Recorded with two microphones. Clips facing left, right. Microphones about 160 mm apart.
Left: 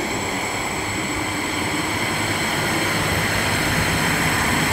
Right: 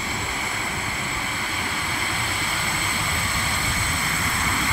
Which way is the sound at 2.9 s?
60° left (ahead or behind).